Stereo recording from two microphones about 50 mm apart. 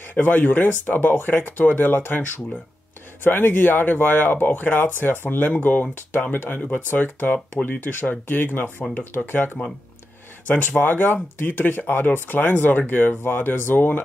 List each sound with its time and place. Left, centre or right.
0.0 s speech: left
3.3 s speech: left